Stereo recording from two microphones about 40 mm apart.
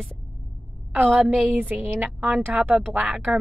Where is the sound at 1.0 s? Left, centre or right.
Right.